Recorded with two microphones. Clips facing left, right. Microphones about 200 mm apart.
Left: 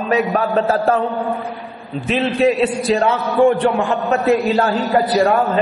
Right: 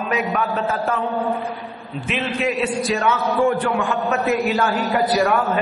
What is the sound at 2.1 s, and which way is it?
A man's voice, 35° left (ahead or behind).